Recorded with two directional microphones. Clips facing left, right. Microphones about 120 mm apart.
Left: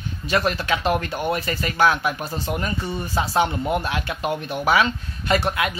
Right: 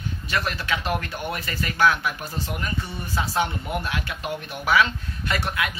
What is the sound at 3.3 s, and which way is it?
Speech, 25° left (ahead or behind).